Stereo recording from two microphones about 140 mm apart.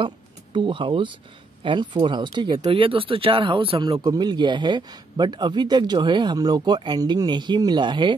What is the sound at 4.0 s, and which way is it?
A man's voice, 30° right (ahead or behind).